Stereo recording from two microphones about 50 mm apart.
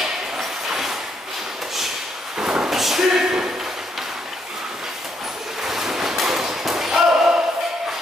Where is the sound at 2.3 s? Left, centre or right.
Centre.